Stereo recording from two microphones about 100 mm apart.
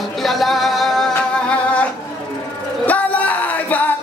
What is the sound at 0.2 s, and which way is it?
Music, centre (ahead or behind).